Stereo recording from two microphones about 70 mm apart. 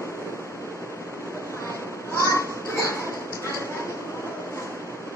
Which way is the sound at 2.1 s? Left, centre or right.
Left.